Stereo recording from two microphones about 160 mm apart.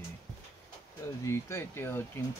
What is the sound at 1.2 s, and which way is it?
Speech, 15° left (ahead or behind).